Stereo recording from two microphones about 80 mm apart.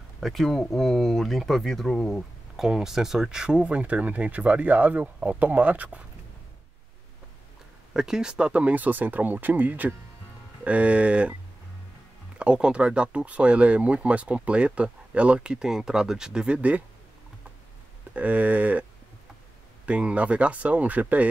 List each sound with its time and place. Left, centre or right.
0.2 s speech: centre
7.9 s speech: centre
12.4 s speech: centre
18.1 s speech: centre
19.9 s speech: centre